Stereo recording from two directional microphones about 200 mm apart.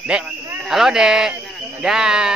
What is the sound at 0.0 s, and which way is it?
Speech, 5° right (ahead or behind).